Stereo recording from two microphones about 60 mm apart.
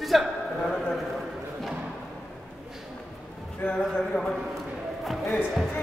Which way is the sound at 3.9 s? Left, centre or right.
Left.